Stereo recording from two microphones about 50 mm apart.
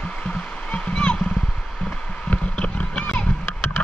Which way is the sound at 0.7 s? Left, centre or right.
Left.